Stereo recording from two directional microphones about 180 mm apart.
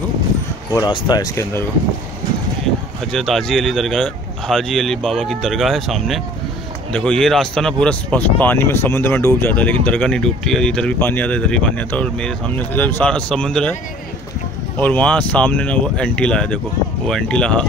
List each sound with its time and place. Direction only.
0.7 s speech: 25° left (ahead or behind)
3.1 s speech: 5° left (ahead or behind)
14.8 s speech: 10° left (ahead or behind)